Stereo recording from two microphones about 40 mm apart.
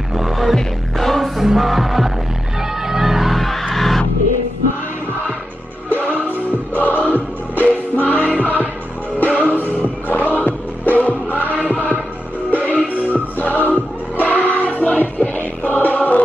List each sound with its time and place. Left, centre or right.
0.2 s music: centre
5.9 s music: left